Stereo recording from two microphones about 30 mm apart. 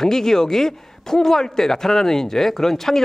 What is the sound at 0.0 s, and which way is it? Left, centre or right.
A man's voice, centre.